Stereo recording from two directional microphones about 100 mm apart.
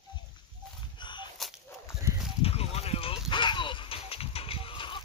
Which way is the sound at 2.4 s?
85° left.